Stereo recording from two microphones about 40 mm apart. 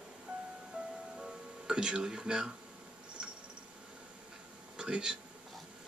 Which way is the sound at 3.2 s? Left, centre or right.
Centre.